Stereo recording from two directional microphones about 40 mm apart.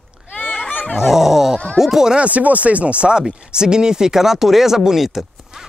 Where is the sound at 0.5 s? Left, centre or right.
Left.